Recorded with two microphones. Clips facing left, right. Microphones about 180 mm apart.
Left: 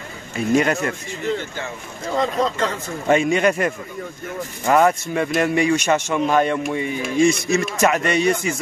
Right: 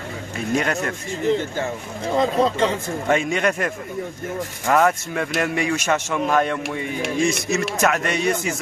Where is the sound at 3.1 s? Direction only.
Centre (ahead or behind).